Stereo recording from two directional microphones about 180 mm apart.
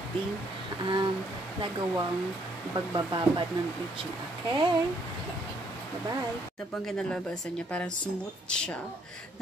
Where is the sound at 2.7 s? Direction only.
25° right (ahead or behind).